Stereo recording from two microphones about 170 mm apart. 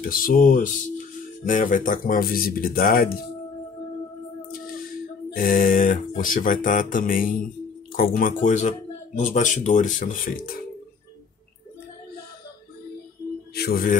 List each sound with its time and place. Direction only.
0.0 s speech: 55° left (ahead or behind)
5.3 s speech: 55° left (ahead or behind)
13.6 s speech: 65° left (ahead or behind)